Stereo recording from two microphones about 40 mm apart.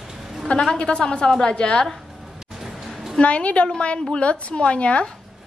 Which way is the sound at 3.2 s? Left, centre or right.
Left.